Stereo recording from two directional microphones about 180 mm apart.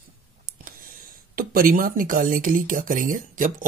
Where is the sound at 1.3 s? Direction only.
50° right (ahead or behind).